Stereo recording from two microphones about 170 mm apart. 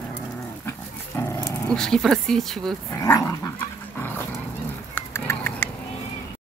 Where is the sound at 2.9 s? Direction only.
20° left (ahead or behind).